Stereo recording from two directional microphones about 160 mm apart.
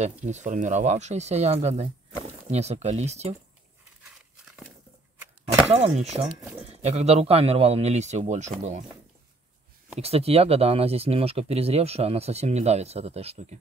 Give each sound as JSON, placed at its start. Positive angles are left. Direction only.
{"t": 0.2, "sound": "speech", "side_deg": -50}
{"t": 5.7, "sound": "speech", "side_deg": -40}
{"t": 9.9, "sound": "speech", "side_deg": -40}